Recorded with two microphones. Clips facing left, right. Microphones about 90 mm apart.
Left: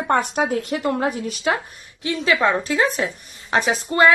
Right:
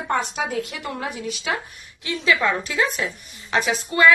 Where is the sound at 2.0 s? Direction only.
30° left (ahead or behind).